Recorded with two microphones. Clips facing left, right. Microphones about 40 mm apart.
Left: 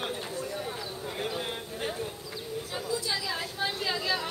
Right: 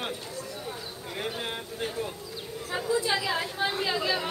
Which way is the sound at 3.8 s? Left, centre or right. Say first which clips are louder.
Right 2 dB; centre.